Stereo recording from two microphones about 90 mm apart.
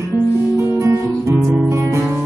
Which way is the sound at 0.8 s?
35° right (ahead or behind).